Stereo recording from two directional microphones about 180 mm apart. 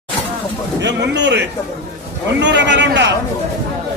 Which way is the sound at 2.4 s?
80° right.